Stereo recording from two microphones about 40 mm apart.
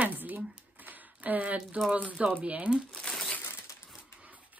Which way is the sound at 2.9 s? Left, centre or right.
Left.